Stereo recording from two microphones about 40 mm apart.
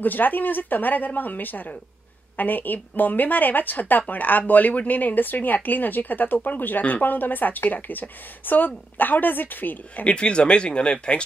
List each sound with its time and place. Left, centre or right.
0.0 s a woman's voice: left
10.0 s speech: left